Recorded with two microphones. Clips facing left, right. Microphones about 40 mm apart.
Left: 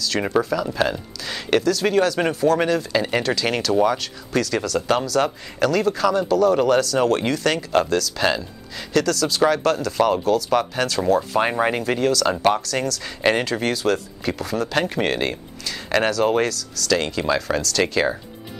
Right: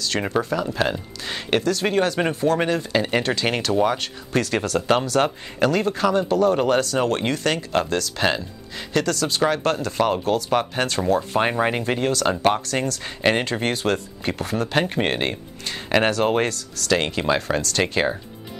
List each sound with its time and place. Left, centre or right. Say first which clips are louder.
0.2 s speech: left 4 dB; centre
0.8 s speech: even; centre
5.6 s speech: left 1 dB; centre
8.2 s speech: left 1 dB; centre
10.2 s speech: left 2 dB; right
11.0 s speech: left 2 dB; centre; by 13.1 s right
13.2 s speech: left 1 dB; centre
13.5 s speech: left 1 dB; right
14.7 s speech: even; centre; by 16.9 s right
16.9 s speech: even; right